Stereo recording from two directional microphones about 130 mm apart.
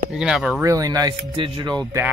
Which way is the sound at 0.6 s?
25° right (ahead or behind).